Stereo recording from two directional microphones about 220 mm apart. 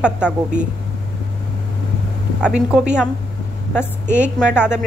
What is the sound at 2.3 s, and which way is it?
Speech, 5° right (ahead or behind).